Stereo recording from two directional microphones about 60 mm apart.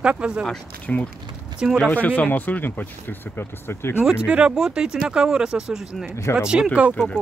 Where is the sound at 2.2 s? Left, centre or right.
Left.